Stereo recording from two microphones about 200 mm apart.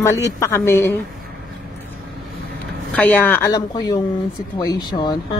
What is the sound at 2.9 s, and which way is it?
Speech, 10° left (ahead or behind).